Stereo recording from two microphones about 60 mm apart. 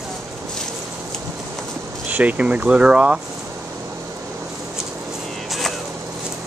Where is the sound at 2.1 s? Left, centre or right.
Right.